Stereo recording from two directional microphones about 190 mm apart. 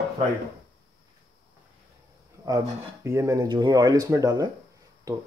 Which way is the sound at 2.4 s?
15° right (ahead or behind).